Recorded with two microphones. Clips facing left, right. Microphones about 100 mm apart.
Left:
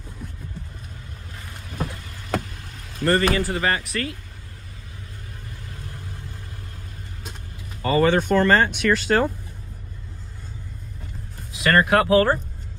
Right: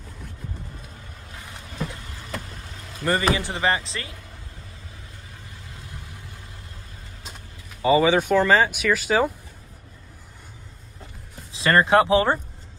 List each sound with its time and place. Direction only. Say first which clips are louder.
3.1 s speech: left 2 dB; 15° right (ahead or behind)
7.8 s speech: right 1 dB; 10° right (ahead or behind)
11.5 s speech: right 1 dB; 25° right (ahead or behind)